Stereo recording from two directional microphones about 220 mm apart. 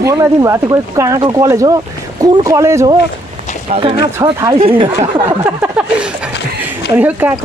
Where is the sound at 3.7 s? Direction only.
25° right (ahead or behind).